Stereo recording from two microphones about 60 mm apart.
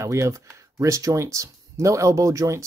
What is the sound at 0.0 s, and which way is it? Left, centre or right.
Speech, right.